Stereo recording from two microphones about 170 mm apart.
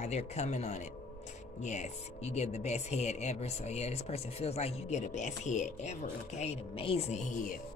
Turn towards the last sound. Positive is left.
turn(degrees=50)  # may be behind; listen again after turning